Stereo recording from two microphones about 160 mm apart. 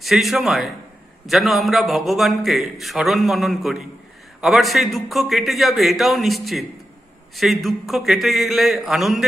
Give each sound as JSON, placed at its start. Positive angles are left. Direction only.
{"t": 0.0, "sound": "a man's voice", "side_deg": 0}